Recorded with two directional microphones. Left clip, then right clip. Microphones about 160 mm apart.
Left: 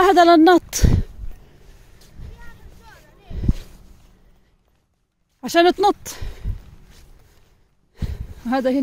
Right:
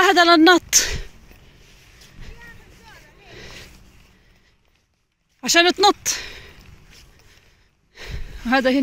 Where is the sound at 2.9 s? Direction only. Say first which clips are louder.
Right 2 dB; 15° left (ahead or behind).